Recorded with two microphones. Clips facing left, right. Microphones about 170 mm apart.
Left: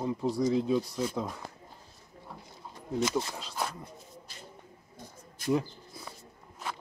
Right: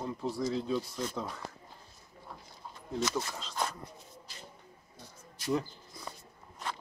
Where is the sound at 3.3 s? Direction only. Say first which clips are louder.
Even; 10° left (ahead or behind).